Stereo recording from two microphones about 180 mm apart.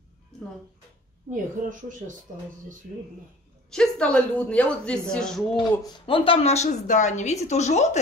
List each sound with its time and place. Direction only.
0.3 s music: centre (ahead or behind)
1.3 s speech: 45° right (ahead or behind)
3.7 s a woman's voice: 5° left (ahead or behind)
5.9 s a woman's voice: 30° left (ahead or behind)